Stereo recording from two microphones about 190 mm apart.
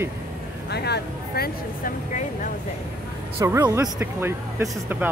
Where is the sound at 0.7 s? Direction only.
60° left (ahead or behind).